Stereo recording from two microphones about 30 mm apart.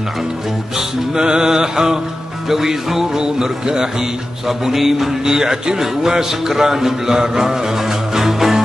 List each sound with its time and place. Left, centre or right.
0.7 s music: right
2.5 s speech: centre
3.2 s music: right
4.5 s speech: centre
5.2 s speech: right
8.1 s music: centre